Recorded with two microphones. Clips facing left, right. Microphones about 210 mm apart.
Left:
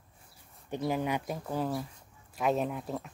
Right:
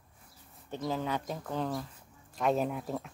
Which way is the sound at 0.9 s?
15° left (ahead or behind).